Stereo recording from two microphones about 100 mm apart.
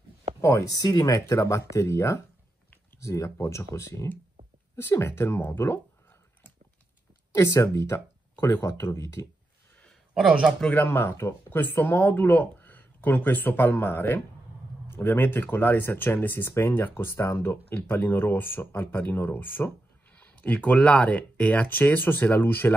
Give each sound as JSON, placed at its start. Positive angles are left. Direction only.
{"t": 0.4, "sound": "speech", "side_deg": 30}
{"t": 7.3, "sound": "speech", "side_deg": 30}
{"t": 10.1, "sound": "speech", "side_deg": -10}
{"t": 10.6, "sound": "speech", "side_deg": 20}